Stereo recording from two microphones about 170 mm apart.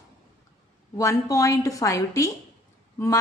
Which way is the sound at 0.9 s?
20° left (ahead or behind).